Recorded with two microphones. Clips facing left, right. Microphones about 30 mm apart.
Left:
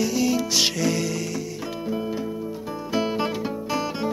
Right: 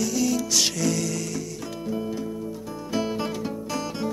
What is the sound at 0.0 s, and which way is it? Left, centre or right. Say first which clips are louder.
Music: left 2 dB; left.